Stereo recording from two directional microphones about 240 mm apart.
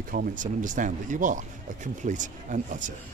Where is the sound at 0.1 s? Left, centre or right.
Right.